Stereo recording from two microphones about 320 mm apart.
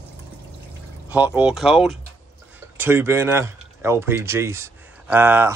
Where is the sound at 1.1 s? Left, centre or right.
Centre.